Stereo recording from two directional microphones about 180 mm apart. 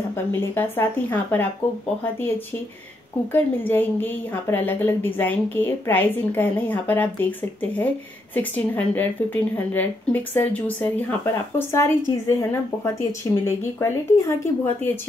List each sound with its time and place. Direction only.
0.1 s a woman's voice: 10° left (ahead or behind)
3.3 s a woman's voice: 10° left (ahead or behind)